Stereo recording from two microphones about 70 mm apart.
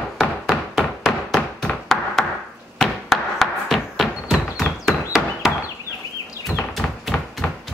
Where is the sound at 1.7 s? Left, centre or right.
Centre.